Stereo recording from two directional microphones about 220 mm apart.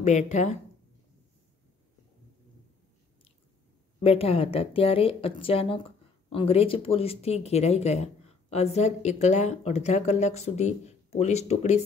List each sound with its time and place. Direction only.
0.0 s a woman's voice: 30° left (ahead or behind)
4.0 s speech: 25° left (ahead or behind)